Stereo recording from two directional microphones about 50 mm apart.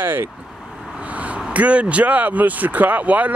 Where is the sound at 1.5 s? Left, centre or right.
Right.